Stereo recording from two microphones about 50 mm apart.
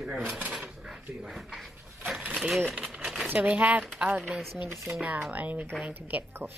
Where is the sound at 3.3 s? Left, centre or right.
Right.